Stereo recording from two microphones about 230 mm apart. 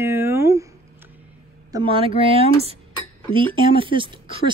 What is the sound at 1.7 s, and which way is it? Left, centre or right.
Speech, right.